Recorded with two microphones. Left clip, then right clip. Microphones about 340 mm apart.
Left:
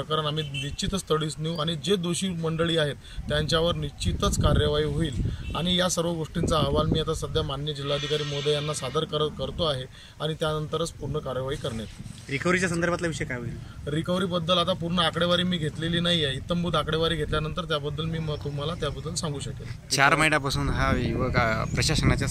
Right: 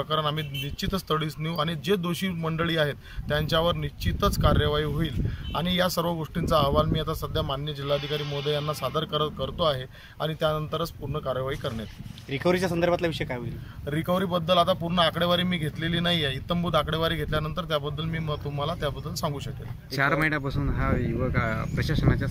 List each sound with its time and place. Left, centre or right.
0.1 s speech: centre
8.2 s speech: centre
8.5 s speech: centre
12.3 s speech: right
13.8 s speech: centre
21.7 s speech: left
22.0 s speech: centre